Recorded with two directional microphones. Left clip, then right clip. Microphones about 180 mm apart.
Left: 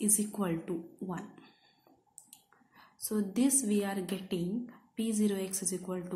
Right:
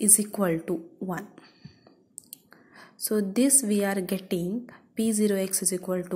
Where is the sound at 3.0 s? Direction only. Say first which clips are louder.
Right 7 dB; 35° right (ahead or behind).